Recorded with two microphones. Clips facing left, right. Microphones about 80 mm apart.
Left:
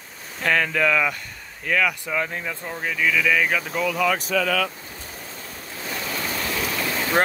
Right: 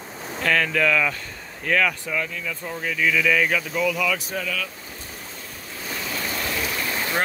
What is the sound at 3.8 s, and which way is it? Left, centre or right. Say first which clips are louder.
Speech: left 3 dB; left.